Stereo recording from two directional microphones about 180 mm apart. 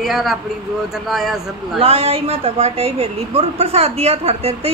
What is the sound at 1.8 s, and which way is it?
A woman's voice, 35° right (ahead or behind).